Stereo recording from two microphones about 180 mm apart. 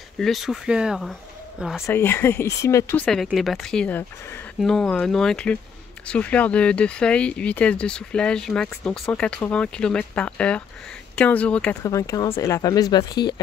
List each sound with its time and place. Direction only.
0.2 s speech: centre (ahead or behind)
1.9 s speech: 10° left (ahead or behind)
3.3 s speech: centre (ahead or behind)
11.8 s speech: 15° left (ahead or behind)